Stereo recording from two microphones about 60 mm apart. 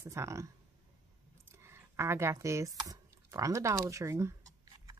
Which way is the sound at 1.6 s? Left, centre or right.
Right.